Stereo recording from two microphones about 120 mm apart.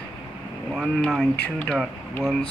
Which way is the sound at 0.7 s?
5° left (ahead or behind).